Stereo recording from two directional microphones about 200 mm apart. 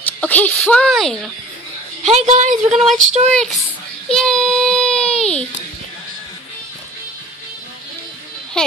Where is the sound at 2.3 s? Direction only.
35° right (ahead or behind).